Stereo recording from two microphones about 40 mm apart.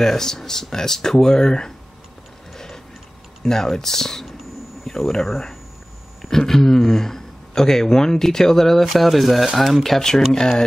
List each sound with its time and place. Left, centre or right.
0.0 s a man's voice: centre
2.5 s mechanisms: centre
3.4 s a man's voice: centre